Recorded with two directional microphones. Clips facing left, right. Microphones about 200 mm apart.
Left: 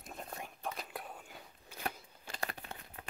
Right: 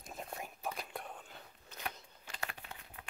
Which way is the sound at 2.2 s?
35° left (ahead or behind).